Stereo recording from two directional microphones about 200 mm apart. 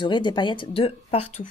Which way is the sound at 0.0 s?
25° left (ahead or behind).